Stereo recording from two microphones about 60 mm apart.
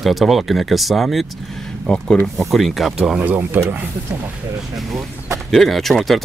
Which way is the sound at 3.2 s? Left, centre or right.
Right.